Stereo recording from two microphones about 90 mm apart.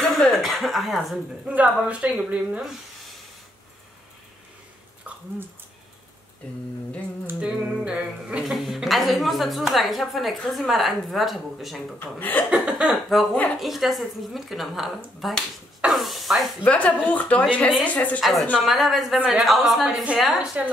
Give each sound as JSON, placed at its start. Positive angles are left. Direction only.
{"t": 0.4, "sound": "speech", "side_deg": 0}
{"t": 1.5, "sound": "speech", "side_deg": -15}
{"t": 7.3, "sound": "speech", "side_deg": -10}
{"t": 12.0, "sound": "speech", "side_deg": 20}
{"t": 12.4, "sound": "speech", "side_deg": -10}
{"t": 16.6, "sound": "a woman's voice", "side_deg": 15}
{"t": 18.2, "sound": "speech", "side_deg": 0}
{"t": 20.3, "sound": "speech", "side_deg": -15}